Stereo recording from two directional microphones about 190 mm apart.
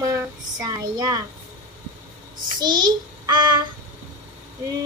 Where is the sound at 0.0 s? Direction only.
15° right (ahead or behind).